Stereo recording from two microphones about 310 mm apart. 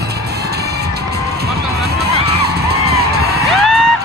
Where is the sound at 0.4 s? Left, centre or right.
Right.